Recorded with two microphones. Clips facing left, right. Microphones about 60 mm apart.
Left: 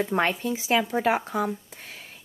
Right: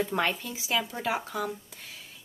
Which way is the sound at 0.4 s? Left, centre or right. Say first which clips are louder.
Left 7 dB; left.